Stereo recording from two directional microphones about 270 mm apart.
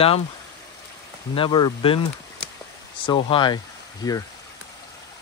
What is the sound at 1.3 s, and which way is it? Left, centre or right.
Speech, centre.